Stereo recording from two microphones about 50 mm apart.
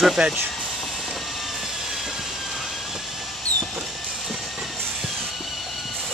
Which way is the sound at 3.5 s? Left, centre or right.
Left.